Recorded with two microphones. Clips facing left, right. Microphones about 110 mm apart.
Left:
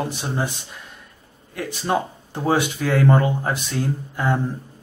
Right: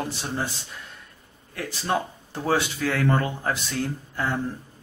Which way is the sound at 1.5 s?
20° left (ahead or behind).